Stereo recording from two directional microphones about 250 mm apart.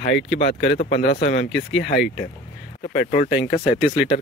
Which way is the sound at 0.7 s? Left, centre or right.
Left.